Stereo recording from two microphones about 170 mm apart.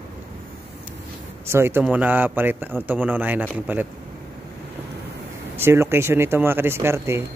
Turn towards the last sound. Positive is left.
turn(degrees=-15)  # may be behind; listen again after turning